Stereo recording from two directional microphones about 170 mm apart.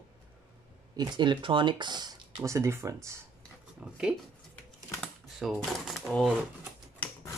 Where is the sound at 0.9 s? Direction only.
25° right (ahead or behind).